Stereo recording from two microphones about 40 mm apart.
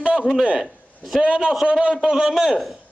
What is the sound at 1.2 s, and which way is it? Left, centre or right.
A man's voice, right.